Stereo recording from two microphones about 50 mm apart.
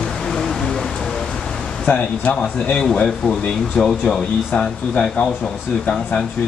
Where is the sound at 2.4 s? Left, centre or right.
Centre.